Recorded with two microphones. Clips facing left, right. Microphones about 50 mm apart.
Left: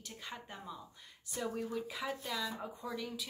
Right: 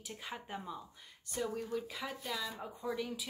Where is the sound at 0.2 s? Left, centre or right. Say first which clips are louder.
Right 3 dB; centre.